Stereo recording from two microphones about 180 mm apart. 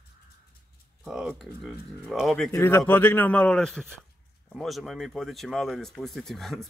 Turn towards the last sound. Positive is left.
turn(degrees=0)  # may be behind; listen again after turning